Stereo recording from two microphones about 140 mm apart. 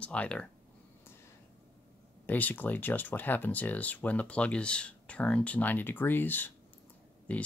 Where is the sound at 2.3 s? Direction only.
10° left (ahead or behind).